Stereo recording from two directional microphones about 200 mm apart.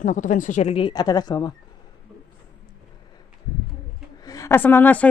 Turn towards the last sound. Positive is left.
turn(degrees=10)  # may be behind; listen again after turning